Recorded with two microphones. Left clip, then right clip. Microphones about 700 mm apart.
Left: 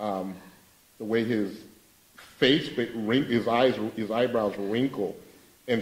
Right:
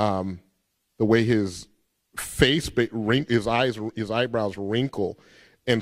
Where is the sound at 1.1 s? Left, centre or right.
Right.